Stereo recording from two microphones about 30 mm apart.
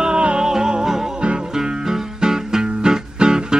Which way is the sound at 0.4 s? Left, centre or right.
Right.